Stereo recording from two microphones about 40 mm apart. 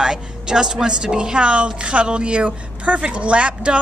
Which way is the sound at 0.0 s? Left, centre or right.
Centre.